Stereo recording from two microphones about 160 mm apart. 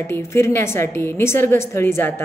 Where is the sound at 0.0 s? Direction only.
15° left (ahead or behind).